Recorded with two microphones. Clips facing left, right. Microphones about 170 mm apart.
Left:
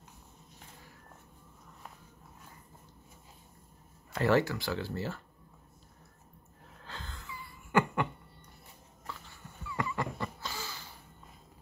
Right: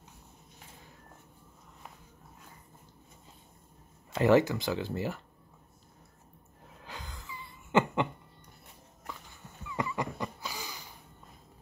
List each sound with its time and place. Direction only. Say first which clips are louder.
4.1 s speech: right 4 dB; 20° right (ahead or behind)
6.8 s wheeze: right 1 dB; 15° right (ahead or behind)
9.7 s a sound: right 1 dB; 20° right (ahead or behind)